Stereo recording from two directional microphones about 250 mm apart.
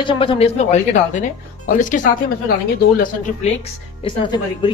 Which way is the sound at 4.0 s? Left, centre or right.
Centre.